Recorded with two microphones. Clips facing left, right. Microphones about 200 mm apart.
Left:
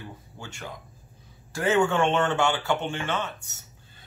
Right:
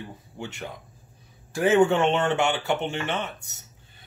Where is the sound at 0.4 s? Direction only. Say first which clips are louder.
Right 5 dB; 20° right (ahead or behind).